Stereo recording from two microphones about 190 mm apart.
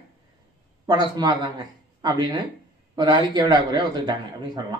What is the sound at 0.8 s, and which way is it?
A man's voice, 20° right (ahead or behind).